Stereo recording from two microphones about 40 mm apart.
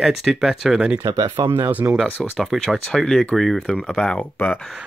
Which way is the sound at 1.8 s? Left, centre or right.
Right.